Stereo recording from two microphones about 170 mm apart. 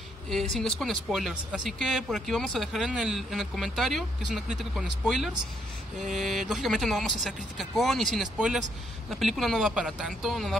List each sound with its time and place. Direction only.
0.3 s speech: centre (ahead or behind)